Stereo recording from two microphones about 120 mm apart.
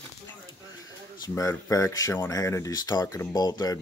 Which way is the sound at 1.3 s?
25° left (ahead or behind).